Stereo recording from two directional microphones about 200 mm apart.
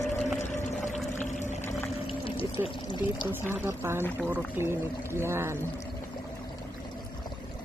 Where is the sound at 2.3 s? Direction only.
25° left (ahead or behind).